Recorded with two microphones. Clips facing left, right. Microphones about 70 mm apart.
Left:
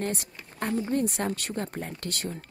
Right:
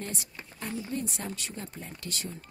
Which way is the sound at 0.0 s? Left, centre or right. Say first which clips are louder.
Left 7 dB; left.